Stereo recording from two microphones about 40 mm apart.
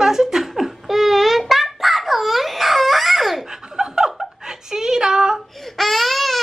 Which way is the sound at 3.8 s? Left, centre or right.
Centre.